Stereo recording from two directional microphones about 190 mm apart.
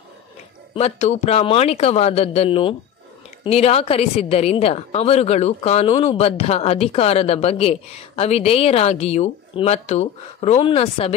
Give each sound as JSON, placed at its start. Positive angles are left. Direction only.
{"t": 0.7, "sound": "a woman's voice", "side_deg": 35}